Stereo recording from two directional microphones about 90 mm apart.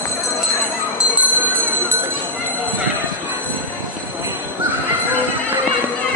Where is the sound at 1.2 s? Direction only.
20° right (ahead or behind).